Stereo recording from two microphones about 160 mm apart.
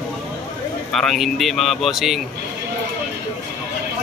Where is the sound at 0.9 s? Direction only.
Centre (ahead or behind).